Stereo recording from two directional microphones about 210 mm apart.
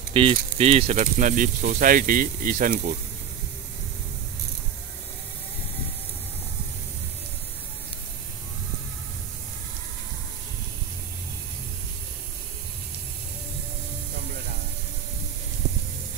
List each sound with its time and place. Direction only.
0.1 s speech: 25° right (ahead or behind); by 3.0 s 40° right (ahead or behind)